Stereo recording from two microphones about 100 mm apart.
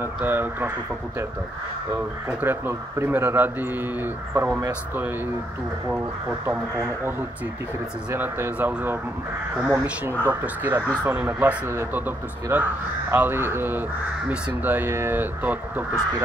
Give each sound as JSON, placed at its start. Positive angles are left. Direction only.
{"t": 0.0, "sound": "speech", "side_deg": -20}
{"t": 2.0, "sound": "speech", "side_deg": -20}
{"t": 6.4, "sound": "speech", "side_deg": -25}